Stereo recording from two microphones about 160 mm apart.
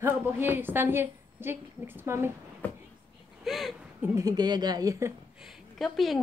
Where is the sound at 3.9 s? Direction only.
15° right (ahead or behind).